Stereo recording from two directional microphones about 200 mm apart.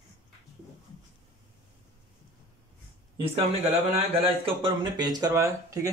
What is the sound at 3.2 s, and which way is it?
Speech, 30° right (ahead or behind).